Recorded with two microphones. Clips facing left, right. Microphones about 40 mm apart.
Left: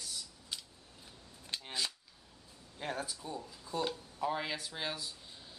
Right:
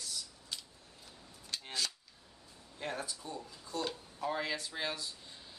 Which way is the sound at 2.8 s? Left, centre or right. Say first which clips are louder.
Left 1 dB; centre.